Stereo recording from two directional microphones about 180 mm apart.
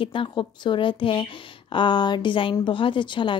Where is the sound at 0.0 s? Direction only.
30° left (ahead or behind).